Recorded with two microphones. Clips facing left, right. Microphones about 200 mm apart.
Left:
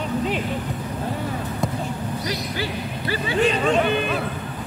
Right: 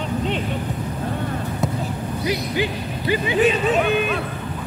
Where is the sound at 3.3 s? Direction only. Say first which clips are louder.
Even; 5° right (ahead or behind).